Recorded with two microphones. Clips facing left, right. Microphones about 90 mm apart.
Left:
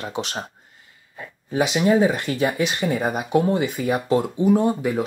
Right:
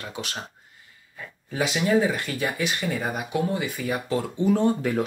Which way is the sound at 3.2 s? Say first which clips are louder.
Left 6 dB; 35° left (ahead or behind).